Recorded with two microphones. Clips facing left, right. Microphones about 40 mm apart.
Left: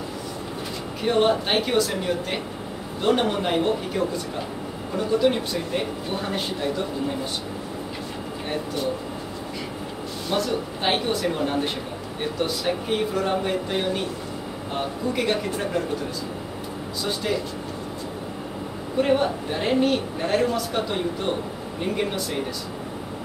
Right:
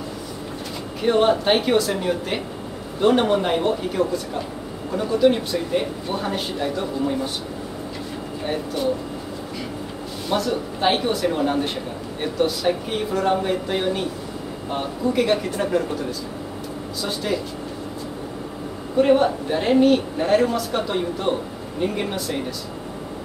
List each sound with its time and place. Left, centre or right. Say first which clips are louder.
1.0 s speech: right 3 dB; centre
8.8 s speech: right 5 dB; centre
10.3 s speech: right 2 dB; centre
18.9 s speech: right 4 dB; centre